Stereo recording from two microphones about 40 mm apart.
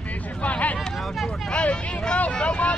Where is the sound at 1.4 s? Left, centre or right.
Left.